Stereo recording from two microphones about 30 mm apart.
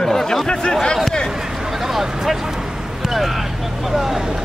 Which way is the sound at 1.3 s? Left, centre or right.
Centre.